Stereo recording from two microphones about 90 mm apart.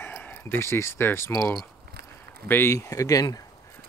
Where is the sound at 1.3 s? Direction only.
35° left (ahead or behind).